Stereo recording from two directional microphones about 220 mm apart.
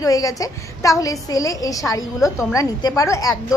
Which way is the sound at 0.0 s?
15° left (ahead or behind).